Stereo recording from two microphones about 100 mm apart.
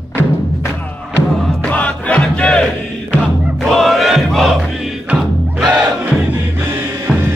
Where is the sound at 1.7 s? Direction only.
15° left (ahead or behind).